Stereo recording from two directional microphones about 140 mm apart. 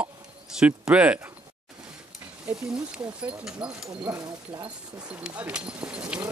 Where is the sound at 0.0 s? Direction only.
10° right (ahead or behind).